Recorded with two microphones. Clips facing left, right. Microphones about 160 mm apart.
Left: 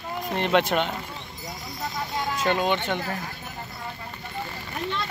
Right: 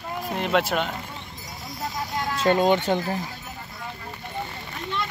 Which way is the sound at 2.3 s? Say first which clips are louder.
Right 5 dB; 35° right (ahead or behind).